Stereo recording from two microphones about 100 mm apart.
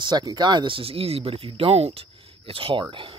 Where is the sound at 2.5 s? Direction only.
60° right (ahead or behind).